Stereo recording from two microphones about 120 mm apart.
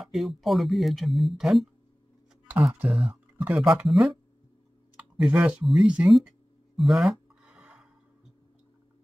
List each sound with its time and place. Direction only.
0.0 s speech: centre (ahead or behind)
2.9 s speech: 10° right (ahead or behind)
5.2 s speech: 10° right (ahead or behind)
6.8 s a sound: centre (ahead or behind)